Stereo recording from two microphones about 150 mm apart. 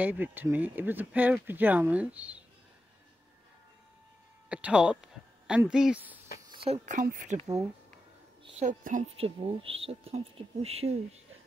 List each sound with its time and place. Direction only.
0.0 s speech: 10° right (ahead or behind)
4.5 s a sound: 10° right (ahead or behind)
5.7 s speech: 5° right (ahead or behind)
6.5 s a sound: 40° right (ahead or behind)
6.9 s speech: 60° right (ahead or behind)
8.5 s speech: 55° right (ahead or behind)
9.2 s speech: 40° right (ahead or behind)